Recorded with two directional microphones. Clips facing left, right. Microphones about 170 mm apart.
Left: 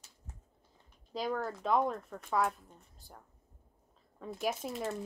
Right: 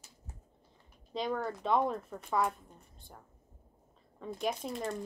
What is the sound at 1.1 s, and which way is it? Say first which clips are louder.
Speech: right 1 dB; centre (ahead or behind).